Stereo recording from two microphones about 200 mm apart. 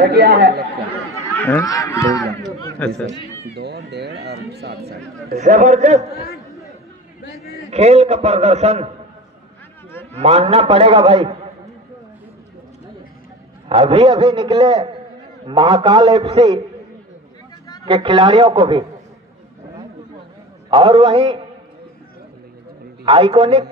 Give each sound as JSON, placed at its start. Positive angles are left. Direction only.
{"t": 0.0, "sound": "speech", "side_deg": -55}
{"t": 1.3, "sound": "speech", "side_deg": 10}
{"t": 3.5, "sound": "a sound", "side_deg": -55}
{"t": 5.0, "sound": "a sound", "side_deg": 0}
{"t": 5.4, "sound": "a man's voice", "side_deg": -35}
{"t": 7.7, "sound": "a man's voice", "side_deg": -35}
{"t": 10.1, "sound": "a man's voice", "side_deg": -30}
{"t": 13.7, "sound": "a man's voice", "side_deg": -25}
{"t": 16.2, "sound": "a man's voice", "side_deg": -30}
{"t": 17.8, "sound": "a man's voice", "side_deg": -25}
{"t": 20.7, "sound": "a man's voice", "side_deg": -30}
{"t": 23.0, "sound": "a man's voice", "side_deg": -25}